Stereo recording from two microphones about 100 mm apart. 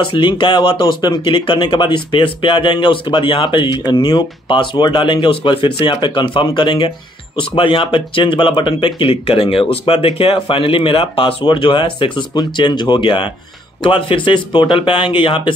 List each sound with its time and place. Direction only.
0.0 s speech: 55° left (ahead or behind)